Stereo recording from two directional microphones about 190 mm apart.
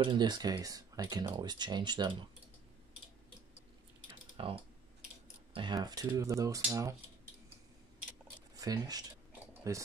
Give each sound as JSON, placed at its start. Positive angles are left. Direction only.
{"t": 0.0, "sound": "speech", "side_deg": -25}
{"t": 4.4, "sound": "speech", "side_deg": -30}
{"t": 8.5, "sound": "speech", "side_deg": -20}